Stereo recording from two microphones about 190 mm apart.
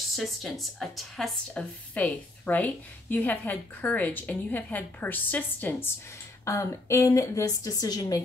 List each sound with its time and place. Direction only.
0.1 s speech: centre (ahead or behind); by 8.2 s 20° left (ahead or behind)